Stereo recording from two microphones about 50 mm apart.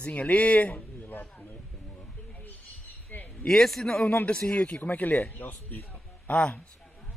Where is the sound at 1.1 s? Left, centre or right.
Left.